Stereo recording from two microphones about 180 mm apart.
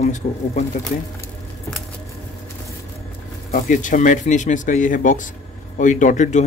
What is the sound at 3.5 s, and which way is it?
Speech, 45° left (ahead or behind).